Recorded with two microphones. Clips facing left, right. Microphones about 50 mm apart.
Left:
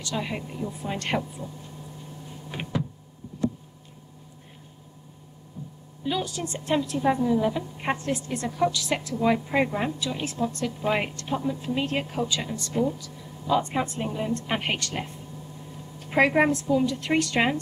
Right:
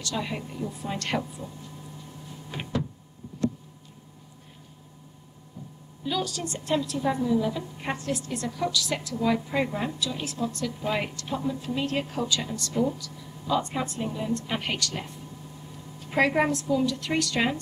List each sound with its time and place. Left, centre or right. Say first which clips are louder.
0.2 s a woman's voice: left 1 dB; centre
2.5 s power windows: left 1 dB; centre
6.0 s a woman's voice: left 1 dB; centre